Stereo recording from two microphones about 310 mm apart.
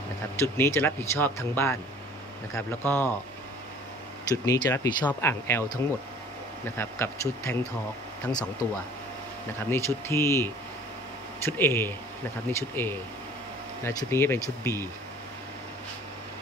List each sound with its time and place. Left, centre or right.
0.4 s speech: centre
4.3 s speech: centre
9.7 s speech: centre